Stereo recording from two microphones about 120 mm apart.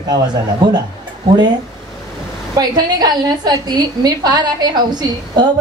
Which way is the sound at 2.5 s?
35° right (ahead or behind).